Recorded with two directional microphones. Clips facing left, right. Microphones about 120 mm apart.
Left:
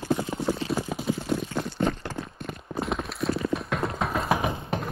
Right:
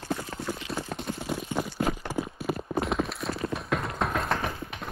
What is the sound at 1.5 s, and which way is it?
Clip-clop, 5° right (ahead or behind).